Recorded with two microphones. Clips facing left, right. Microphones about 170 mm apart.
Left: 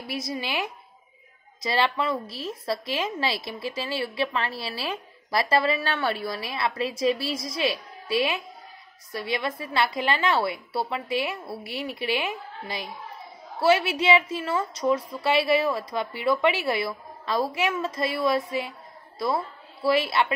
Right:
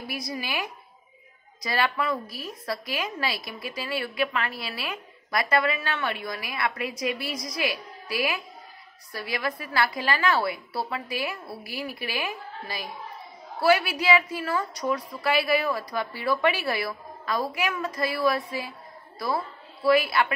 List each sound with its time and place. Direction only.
0.0 s a woman's voice: 25° left (ahead or behind)